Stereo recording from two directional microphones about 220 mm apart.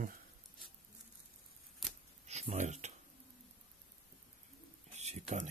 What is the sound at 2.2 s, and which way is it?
Speech, 30° right (ahead or behind).